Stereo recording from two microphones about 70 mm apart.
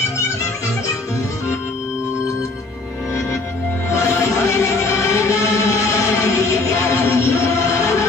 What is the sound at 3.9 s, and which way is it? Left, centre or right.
Music, left.